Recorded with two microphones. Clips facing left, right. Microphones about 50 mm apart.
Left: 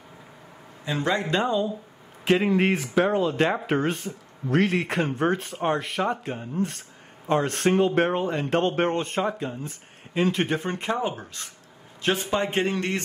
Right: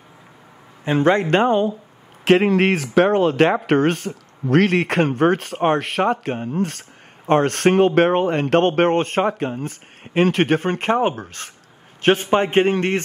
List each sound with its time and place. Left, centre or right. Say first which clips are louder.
0.8 s speech: right 9 dB; right
2.2 s a man's voice: right 6 dB; right